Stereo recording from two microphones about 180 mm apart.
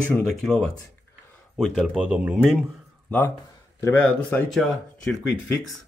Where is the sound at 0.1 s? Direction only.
5° left (ahead or behind).